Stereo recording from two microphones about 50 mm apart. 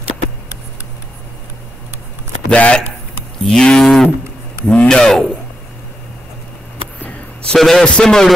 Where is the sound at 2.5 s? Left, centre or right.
Left.